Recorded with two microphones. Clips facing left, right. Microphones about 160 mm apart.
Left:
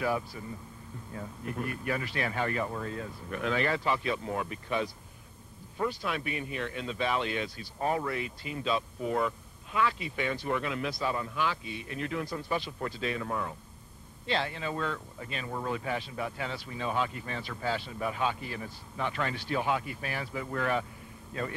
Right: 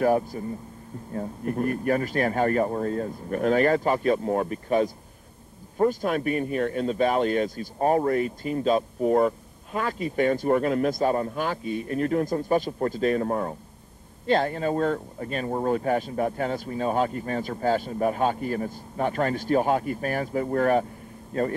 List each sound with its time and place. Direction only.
0.0 s a man's voice: 45° right (ahead or behind)